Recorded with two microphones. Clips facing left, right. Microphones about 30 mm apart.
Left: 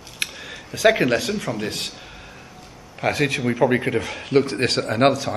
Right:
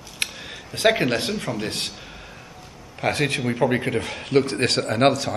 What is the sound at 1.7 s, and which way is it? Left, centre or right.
Speech, centre.